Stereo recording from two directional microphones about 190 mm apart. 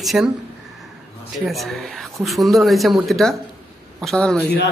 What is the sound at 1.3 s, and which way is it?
Speech, centre (ahead or behind).